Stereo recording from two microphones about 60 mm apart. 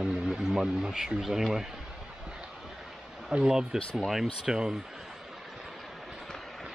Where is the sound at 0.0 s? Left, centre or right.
Centre.